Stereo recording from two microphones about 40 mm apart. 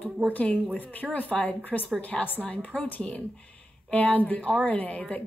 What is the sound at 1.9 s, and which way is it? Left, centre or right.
A woman's voice, left.